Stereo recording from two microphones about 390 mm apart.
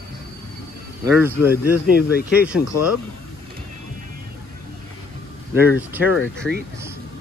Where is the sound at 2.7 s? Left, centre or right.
Left.